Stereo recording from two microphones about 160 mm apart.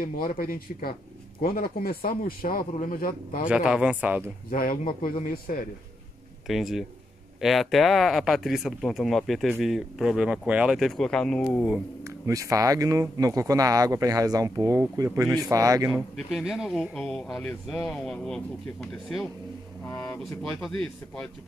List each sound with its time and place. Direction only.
0.0 s speech: 60° left (ahead or behind)
3.4 s speech: 5° right (ahead or behind)
4.5 s speech: 60° left (ahead or behind)
6.4 s speech: centre (ahead or behind)
12.0 s speech: 20° right (ahead or behind)
15.2 s speech: centre (ahead or behind)
15.5 s speech: 20° right (ahead or behind)
16.2 s speech: centre (ahead or behind)